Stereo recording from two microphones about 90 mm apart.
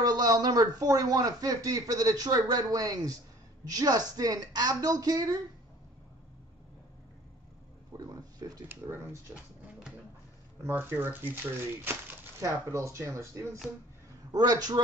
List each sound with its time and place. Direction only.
0.0 s speech: 45° right (ahead or behind)
7.9 s speech: 35° right (ahead or behind)
8.6 s speech: 25° right (ahead or behind)
10.6 s speech: 25° right (ahead or behind)
14.3 s speech: 45° right (ahead or behind)